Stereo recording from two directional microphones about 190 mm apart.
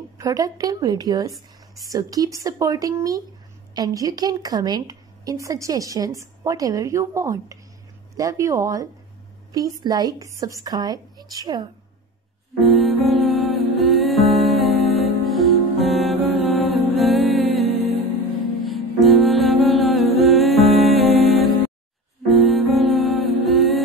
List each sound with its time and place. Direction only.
0.2 s a woman's voice: 20° right (ahead or behind)
12.5 s music: centre (ahead or behind)